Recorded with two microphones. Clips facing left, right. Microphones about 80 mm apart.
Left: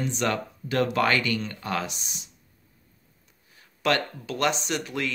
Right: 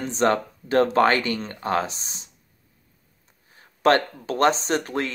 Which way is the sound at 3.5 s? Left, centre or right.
Right.